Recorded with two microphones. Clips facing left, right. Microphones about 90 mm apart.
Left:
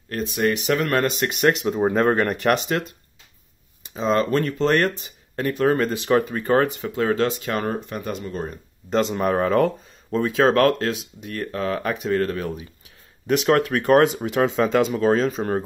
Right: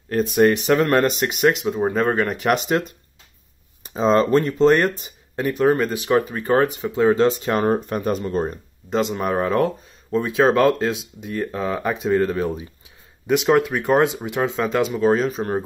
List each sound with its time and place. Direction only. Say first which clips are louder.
0.4 s speech: right 5 dB; 30° right (ahead or behind)
1.2 s speech: right 1 dB; 5° right (ahead or behind)
3.9 s speech: right 4 dB; 30° right (ahead or behind); by 6.9 s 5° right (ahead or behind)
7.0 s speech: right 5 dB; 25° right (ahead or behind)
8.9 s speech: even; 5° right (ahead or behind)